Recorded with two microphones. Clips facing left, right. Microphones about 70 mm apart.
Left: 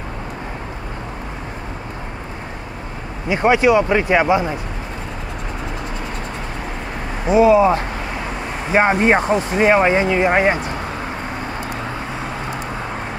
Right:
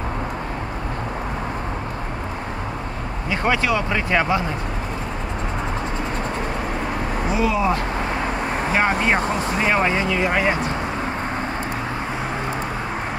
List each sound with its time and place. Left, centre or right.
3.3 s speech: centre
7.3 s speech: left